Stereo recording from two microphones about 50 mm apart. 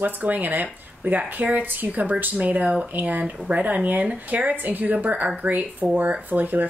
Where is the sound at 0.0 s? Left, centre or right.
Right.